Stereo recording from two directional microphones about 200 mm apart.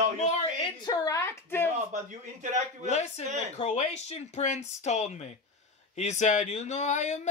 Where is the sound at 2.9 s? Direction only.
35° left (ahead or behind).